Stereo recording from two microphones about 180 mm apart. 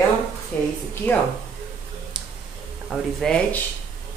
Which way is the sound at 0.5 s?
5° left (ahead or behind).